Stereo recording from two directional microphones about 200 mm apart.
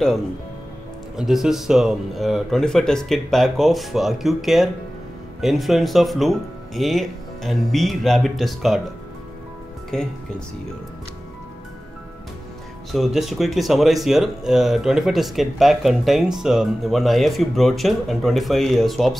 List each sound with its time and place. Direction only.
1.1 s speech: centre (ahead or behind)
9.9 s speech: 5° left (ahead or behind)
12.9 s speech: centre (ahead or behind)